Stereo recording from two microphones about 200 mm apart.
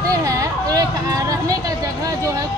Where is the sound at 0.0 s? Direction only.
15° right (ahead or behind).